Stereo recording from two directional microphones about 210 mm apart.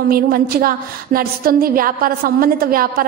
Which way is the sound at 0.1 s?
45° right (ahead or behind).